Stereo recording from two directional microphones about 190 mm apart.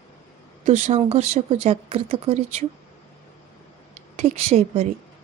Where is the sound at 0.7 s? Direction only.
40° right (ahead or behind).